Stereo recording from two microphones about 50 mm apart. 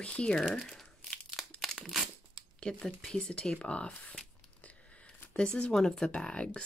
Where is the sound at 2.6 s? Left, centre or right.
Centre.